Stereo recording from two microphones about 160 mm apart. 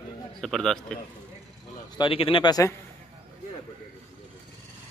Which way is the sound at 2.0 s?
35° left (ahead or behind).